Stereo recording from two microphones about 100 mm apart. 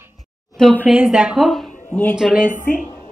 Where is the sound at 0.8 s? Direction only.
15° right (ahead or behind).